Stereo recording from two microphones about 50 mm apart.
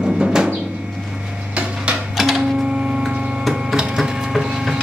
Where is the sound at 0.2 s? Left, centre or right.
Centre.